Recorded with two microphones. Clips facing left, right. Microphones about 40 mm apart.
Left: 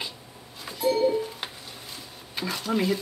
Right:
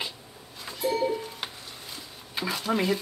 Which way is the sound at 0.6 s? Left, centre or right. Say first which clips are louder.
Left 3 dB; centre.